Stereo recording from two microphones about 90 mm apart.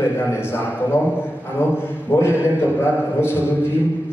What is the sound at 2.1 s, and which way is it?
A man's voice, 25° left (ahead or behind).